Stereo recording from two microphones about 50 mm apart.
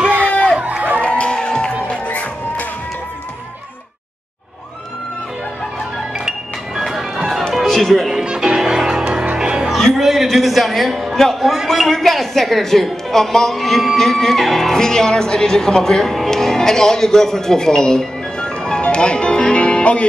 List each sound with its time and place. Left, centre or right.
0.0 s run: right
1.0 s music: left
1.9 s music: left
6.1 s music: centre
8.1 s music: centre
9.9 s a sound: centre
11.1 s a woman's voice: centre; by 20.1 s left